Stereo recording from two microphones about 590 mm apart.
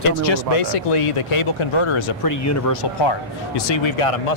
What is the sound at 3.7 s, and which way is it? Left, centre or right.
Speech, left.